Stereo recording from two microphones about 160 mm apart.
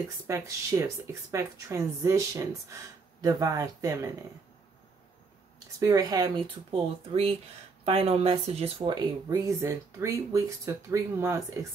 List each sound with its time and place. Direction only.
0.3 s a woman's voice: 20° right (ahead or behind)
5.8 s a woman's voice: 20° right (ahead or behind)
6.7 s a woman's voice: 40° right (ahead or behind); by 11.6 s 20° right (ahead or behind)